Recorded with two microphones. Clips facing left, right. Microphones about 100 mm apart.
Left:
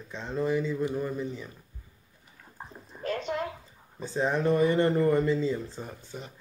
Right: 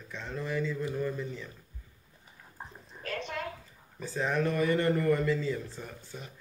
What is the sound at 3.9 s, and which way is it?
A man's voice, 25° left (ahead or behind).